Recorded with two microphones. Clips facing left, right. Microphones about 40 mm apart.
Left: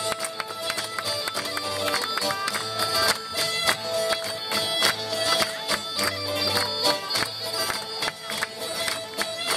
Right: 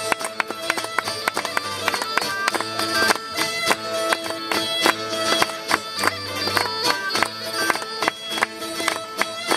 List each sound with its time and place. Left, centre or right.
0.1 s music: right